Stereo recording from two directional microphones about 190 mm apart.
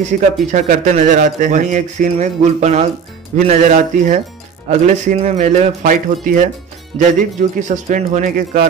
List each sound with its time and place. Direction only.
0.1 s speech: 45° right (ahead or behind)